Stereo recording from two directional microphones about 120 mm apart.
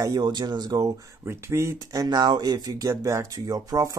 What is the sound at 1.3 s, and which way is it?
Speech, 20° right (ahead or behind).